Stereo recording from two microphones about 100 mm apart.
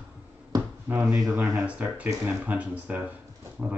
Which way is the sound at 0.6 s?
25° right (ahead or behind).